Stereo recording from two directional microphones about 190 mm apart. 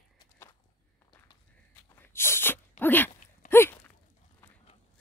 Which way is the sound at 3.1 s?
45° left (ahead or behind).